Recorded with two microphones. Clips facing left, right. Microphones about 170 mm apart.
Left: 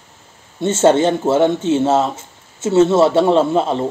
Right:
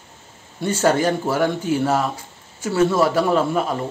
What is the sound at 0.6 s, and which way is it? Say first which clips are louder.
Speech: left 5 dB; 25° left (ahead or behind).